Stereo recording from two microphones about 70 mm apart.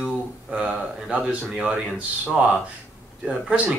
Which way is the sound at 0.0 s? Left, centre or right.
Centre.